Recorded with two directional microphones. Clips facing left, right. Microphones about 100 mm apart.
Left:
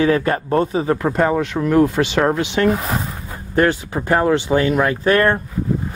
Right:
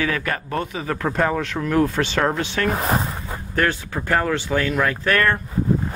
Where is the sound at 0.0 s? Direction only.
30° left (ahead or behind).